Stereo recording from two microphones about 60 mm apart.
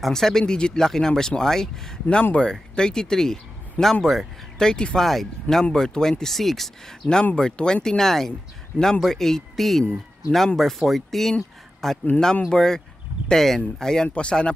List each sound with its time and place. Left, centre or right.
0.0 s speech: centre